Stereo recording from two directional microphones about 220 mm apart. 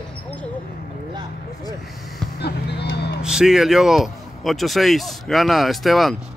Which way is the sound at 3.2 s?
Centre (ahead or behind).